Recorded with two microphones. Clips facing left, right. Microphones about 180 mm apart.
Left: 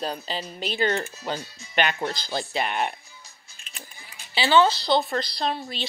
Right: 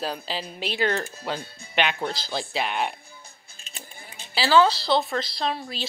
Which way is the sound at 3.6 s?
35° right (ahead or behind).